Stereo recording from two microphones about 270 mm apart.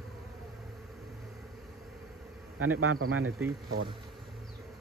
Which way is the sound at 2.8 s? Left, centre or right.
Right.